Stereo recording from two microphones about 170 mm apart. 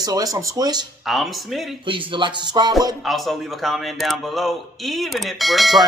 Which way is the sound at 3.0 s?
Centre (ahead or behind).